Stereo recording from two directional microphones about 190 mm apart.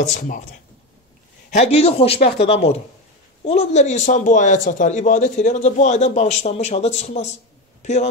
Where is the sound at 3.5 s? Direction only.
35° left (ahead or behind).